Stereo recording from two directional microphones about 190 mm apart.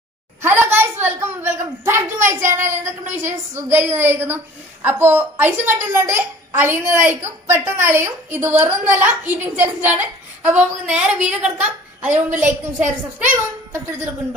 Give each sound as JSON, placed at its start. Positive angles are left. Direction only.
{"t": 0.4, "sound": "a sound", "side_deg": -10}
{"t": 2.2, "sound": "a woman's voice", "side_deg": -15}
{"t": 12.1, "sound": "a woman's voice", "side_deg": -40}
{"t": 12.4, "sound": "a woman's voice", "side_deg": -10}